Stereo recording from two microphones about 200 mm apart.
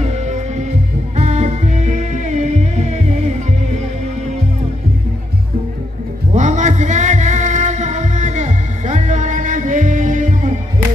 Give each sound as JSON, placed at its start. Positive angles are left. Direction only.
{"t": 0.0, "sound": "music", "side_deg": -35}
{"t": 6.3, "sound": "music", "side_deg": -35}